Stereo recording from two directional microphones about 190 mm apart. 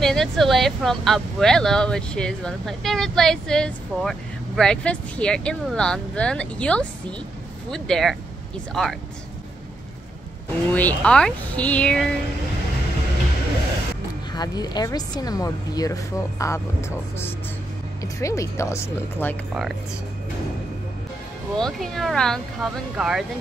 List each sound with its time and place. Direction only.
0.0 s speech: centre (ahead or behind)
10.7 s speech: 10° left (ahead or behind)
14.3 s speech: 20° left (ahead or behind)
18.0 s speech: 15° left (ahead or behind)
21.5 s speech: centre (ahead or behind)